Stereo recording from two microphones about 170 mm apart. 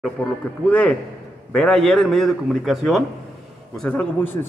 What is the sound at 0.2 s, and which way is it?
A man's voice, 10° left (ahead or behind).